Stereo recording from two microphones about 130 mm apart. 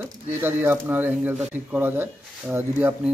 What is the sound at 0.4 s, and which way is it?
Speech, 15° right (ahead or behind).